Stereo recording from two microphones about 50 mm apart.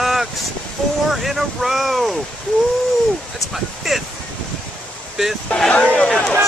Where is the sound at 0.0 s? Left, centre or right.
Centre.